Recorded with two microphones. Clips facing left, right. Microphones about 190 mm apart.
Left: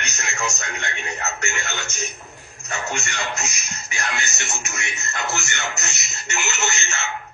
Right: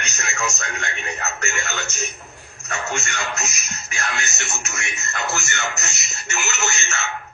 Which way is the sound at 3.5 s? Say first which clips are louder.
Even; 15° left (ahead or behind).